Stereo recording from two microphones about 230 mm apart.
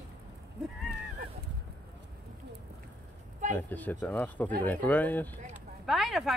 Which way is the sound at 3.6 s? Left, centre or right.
Centre.